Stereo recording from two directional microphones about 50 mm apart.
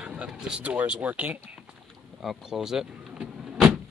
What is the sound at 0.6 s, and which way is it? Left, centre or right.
Speech, right.